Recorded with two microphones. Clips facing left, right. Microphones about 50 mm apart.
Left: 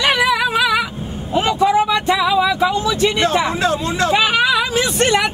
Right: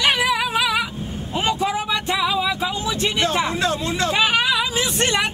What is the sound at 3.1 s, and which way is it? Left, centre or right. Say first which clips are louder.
Speech: left 4 dB; centre.